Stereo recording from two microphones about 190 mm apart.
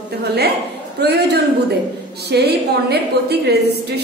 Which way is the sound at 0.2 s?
60° right (ahead or behind).